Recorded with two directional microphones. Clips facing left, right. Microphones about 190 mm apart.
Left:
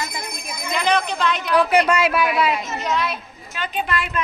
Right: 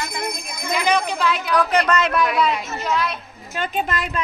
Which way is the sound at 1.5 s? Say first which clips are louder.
Left 3 dB; 10° left (ahead or behind).